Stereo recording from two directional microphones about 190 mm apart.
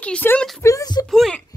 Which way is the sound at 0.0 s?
10° left (ahead or behind).